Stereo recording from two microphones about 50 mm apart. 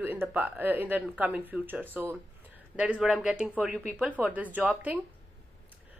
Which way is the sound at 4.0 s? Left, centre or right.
Right.